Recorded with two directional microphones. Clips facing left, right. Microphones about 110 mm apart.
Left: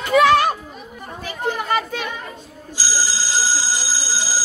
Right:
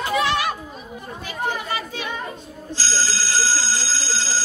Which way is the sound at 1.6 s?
55° left (ahead or behind).